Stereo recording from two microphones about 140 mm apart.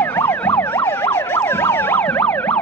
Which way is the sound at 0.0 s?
15° left (ahead or behind).